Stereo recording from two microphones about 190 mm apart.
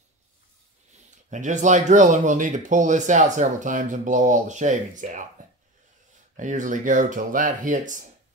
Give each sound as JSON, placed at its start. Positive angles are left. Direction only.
{"t": 1.3, "sound": "speech", "side_deg": -40}
{"t": 6.3, "sound": "speech", "side_deg": -40}